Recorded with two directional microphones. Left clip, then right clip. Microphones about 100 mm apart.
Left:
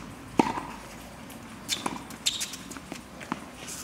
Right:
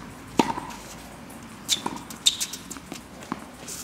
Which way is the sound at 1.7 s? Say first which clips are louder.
Right 6 dB; 20° right (ahead or behind).